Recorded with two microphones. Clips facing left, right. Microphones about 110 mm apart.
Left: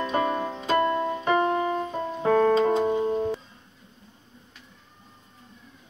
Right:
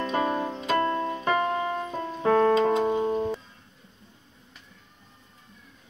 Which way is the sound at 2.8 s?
30° right (ahead or behind).